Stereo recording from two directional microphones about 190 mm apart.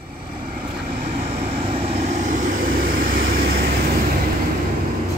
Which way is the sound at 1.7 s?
30° right (ahead or behind).